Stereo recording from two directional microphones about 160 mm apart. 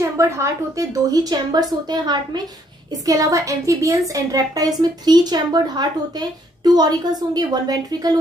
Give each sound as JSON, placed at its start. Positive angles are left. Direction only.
{"t": 0.0, "sound": "a woman's voice", "side_deg": -20}